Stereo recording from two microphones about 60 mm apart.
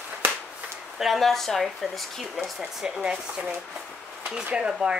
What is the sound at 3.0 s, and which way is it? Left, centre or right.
Speech, centre.